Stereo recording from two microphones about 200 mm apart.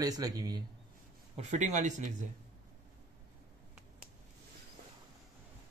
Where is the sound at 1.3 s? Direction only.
35° right (ahead or behind).